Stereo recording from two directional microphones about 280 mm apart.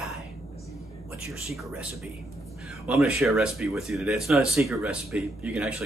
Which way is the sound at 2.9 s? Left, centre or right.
Centre.